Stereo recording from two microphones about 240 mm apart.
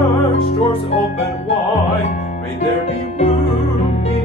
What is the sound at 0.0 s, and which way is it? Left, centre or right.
Music, left.